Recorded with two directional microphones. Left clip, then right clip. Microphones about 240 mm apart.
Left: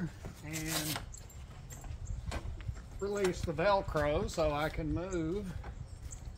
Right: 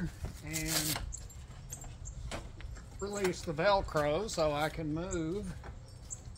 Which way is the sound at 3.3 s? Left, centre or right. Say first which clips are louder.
Right 3 dB; centre.